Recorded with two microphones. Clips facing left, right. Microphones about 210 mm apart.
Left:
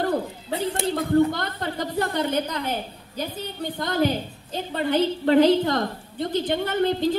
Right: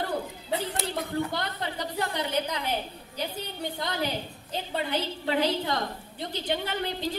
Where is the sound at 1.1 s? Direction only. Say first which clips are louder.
Left 10 dB; 50° left (ahead or behind).